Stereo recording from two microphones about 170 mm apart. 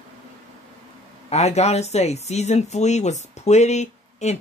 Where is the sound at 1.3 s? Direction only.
40° left (ahead or behind).